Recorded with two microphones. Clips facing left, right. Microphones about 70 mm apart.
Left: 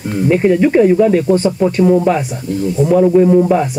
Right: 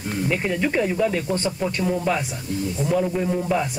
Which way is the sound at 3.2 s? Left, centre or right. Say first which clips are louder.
Left 12 dB; left.